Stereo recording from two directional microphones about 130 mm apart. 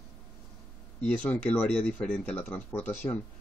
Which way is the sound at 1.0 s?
10° left (ahead or behind).